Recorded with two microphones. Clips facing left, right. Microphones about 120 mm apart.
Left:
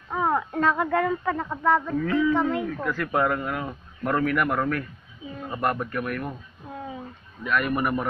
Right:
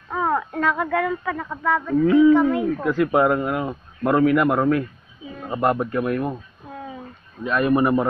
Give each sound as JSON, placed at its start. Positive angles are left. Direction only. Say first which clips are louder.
{"t": 0.1, "sound": "speech", "louder": "right 2 dB", "side_deg": 20}
{"t": 2.0, "sound": "speech", "louder": "right 8 dB", "side_deg": -20}
{"t": 7.4, "sound": "speech", "louder": "right 6 dB", "side_deg": -30}